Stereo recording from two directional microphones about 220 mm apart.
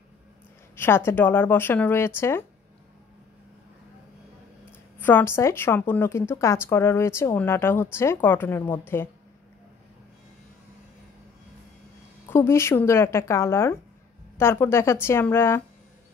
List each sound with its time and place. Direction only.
0.7 s a woman's voice: 10° left (ahead or behind)
5.0 s a woman's voice: 10° left (ahead or behind)
12.3 s a woman's voice: 10° left (ahead or behind)